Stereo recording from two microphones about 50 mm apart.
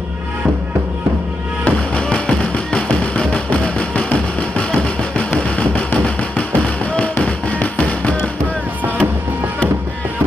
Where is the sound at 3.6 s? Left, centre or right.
Left.